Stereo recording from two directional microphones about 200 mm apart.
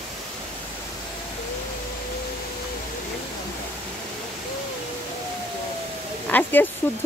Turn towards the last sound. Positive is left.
turn(degrees=10)  # may be behind; listen again after turning